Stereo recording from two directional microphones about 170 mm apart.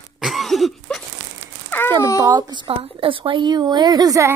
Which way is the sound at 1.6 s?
10° left (ahead or behind).